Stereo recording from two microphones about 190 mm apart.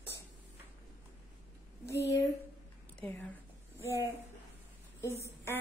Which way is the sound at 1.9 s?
60° left (ahead or behind).